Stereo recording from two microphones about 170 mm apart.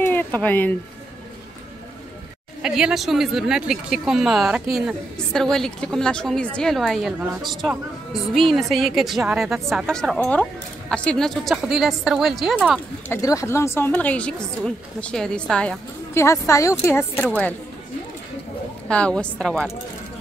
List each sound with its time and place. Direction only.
0.0 s a sound: 10° left (ahead or behind)
2.6 s a woman's voice: 5° right (ahead or behind)
13.1 s a woman's voice: 20° left (ahead or behind)
16.2 s a woman's voice: 15° left (ahead or behind)
18.9 s a woman's voice: 5° left (ahead or behind)